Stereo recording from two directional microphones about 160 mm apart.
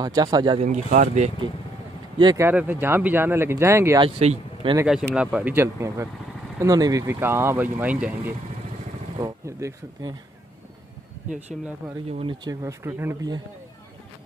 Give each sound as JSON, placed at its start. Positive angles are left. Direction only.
{"t": 0.0, "sound": "speech", "side_deg": -25}
{"t": 0.6, "sound": "speech", "side_deg": -50}
{"t": 2.1, "sound": "speech", "side_deg": -25}
{"t": 2.4, "sound": "speech", "side_deg": -10}
{"t": 4.0, "sound": "speech", "side_deg": -35}
{"t": 5.1, "sound": "speech", "side_deg": -5}
{"t": 11.2, "sound": "speech", "side_deg": -45}
{"t": 12.1, "sound": "speech", "side_deg": -35}
{"t": 12.4, "sound": "speech", "side_deg": -15}